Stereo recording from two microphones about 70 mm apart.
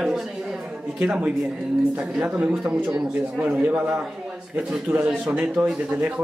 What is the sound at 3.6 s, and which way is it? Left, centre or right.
A man's voice, right.